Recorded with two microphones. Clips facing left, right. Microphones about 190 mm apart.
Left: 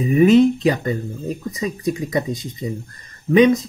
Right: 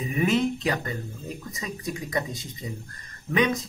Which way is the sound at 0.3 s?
20° left (ahead or behind).